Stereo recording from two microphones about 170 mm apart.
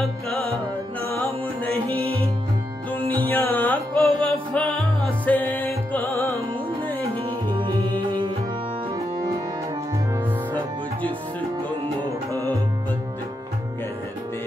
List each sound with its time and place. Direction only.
1.0 s music: 15° left (ahead or behind)
2.9 s music: 10° left (ahead or behind)
7.2 s music: 30° right (ahead or behind)